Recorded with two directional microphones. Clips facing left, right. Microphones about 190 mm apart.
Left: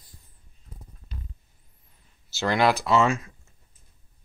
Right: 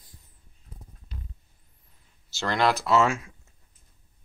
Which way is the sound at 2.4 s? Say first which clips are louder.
Left 2 dB; 5° left (ahead or behind).